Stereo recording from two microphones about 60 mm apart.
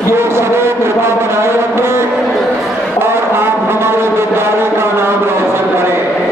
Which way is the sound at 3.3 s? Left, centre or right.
Right.